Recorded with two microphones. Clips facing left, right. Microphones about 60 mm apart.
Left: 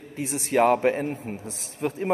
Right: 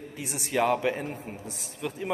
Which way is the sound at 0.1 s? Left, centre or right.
Left.